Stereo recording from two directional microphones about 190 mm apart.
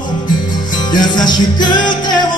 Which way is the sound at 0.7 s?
20° left (ahead or behind).